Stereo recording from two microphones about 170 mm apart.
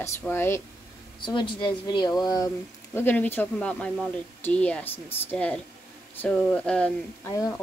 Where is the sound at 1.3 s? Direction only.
30° left (ahead or behind).